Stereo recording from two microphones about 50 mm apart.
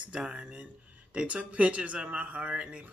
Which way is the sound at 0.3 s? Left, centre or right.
Right.